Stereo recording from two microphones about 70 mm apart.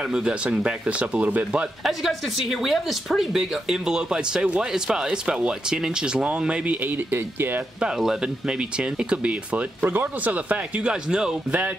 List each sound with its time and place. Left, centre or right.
0.1 s a woman's voice: centre
1.8 s a woman's voice: centre; by 7.6 s right
7.8 s a woman's voice: centre